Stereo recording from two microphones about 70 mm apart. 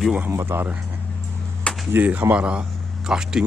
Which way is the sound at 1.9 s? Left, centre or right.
Right.